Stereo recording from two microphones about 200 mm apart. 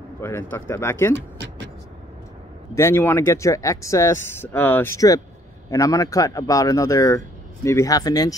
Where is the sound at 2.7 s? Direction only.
15° left (ahead or behind).